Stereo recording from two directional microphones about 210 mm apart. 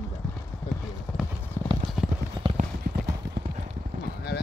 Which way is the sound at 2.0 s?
Centre (ahead or behind).